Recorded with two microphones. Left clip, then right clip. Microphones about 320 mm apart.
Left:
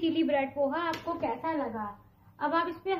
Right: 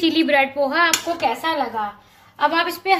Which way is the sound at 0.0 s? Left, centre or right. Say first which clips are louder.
Right 11 dB; right.